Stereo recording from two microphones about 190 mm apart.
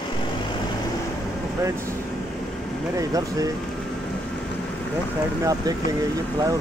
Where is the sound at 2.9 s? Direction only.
20° right (ahead or behind).